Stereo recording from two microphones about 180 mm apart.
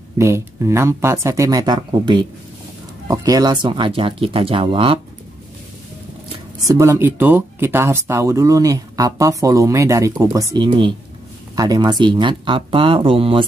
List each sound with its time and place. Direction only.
0.2 s speech: 15° right (ahead or behind); by 5.0 s 30° right (ahead or behind)
6.6 s speech: 15° right (ahead or behind)